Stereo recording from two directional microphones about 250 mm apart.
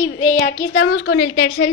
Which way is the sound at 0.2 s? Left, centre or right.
Left.